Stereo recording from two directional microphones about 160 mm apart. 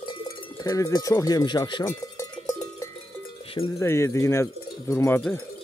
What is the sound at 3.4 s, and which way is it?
Wind chime, 35° left (ahead or behind).